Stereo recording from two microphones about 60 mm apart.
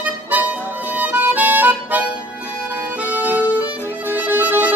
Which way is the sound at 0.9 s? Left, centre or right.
Right.